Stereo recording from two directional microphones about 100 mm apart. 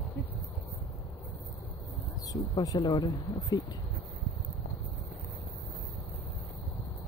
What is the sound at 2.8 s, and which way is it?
Speech, 45° left (ahead or behind).